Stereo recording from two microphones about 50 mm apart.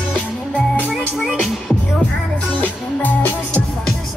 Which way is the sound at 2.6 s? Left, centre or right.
Left.